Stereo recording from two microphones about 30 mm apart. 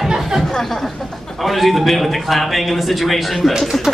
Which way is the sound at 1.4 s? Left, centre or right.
Centre.